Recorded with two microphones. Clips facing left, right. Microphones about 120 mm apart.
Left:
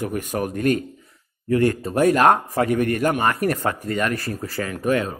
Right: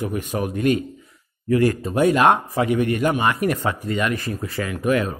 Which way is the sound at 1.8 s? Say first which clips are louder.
Left 1 dB; 40° left (ahead or behind).